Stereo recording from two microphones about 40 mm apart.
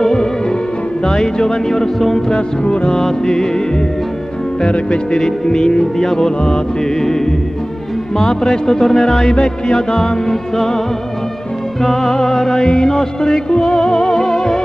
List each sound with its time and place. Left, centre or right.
0.0 s music: centre
2.2 s music: left
3.0 s music: centre
11.8 s music: centre
13.8 s music: centre